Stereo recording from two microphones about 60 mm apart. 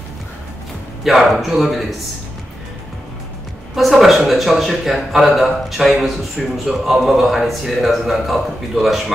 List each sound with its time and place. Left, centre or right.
1.0 s a man's voice: centre
3.7 s a man's voice: centre